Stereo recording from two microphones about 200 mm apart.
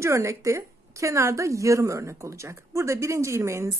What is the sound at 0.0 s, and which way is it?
A woman's voice, 15° right (ahead or behind).